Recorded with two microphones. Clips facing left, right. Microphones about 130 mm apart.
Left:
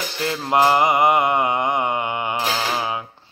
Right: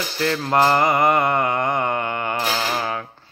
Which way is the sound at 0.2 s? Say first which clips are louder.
Even; 15° left (ahead or behind).